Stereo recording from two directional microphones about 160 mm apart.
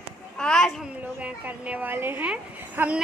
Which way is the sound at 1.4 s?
10° right (ahead or behind).